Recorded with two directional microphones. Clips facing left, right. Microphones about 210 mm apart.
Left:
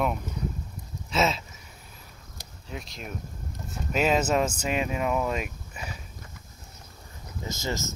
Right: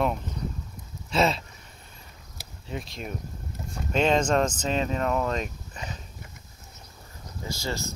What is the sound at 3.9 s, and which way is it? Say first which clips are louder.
Speech: right 1 dB; 5° left (ahead or behind).